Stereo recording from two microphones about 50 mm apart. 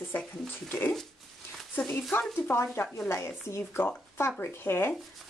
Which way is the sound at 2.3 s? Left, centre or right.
Left.